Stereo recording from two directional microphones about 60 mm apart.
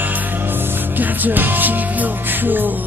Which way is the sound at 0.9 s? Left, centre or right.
Right.